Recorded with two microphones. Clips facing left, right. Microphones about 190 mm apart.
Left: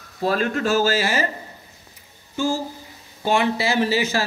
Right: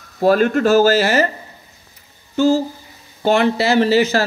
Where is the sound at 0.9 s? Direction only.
65° right (ahead or behind).